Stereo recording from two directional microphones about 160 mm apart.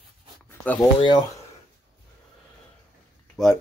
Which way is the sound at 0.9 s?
25° left (ahead or behind).